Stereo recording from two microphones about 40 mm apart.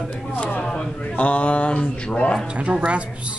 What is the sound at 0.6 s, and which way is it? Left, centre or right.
Speech, left.